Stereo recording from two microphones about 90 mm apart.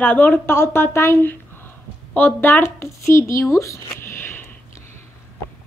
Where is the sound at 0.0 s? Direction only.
20° left (ahead or behind).